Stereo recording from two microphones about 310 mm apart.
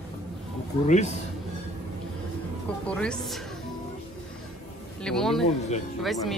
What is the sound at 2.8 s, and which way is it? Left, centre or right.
Speech, centre.